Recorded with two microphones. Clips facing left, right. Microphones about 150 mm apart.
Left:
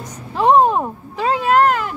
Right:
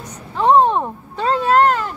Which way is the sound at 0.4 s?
10° left (ahead or behind).